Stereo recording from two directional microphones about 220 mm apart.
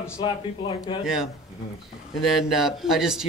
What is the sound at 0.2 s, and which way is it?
Speech, 20° left (ahead or behind).